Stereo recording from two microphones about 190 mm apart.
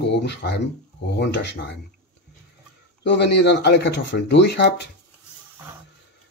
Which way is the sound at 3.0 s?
65° left (ahead or behind).